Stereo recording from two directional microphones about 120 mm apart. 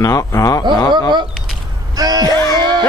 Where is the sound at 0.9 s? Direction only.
40° right (ahead or behind).